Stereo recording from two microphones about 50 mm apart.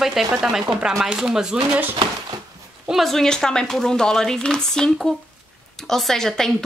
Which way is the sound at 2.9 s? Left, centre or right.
Centre.